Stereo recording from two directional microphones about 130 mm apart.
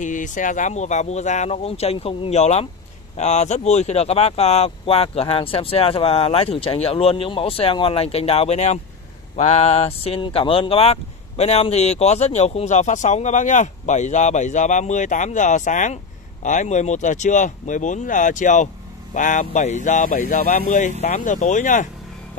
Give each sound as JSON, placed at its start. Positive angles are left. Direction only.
{"t": 0.0, "sound": "speech", "side_deg": 75}
{"t": 21.0, "sound": "speech", "side_deg": 70}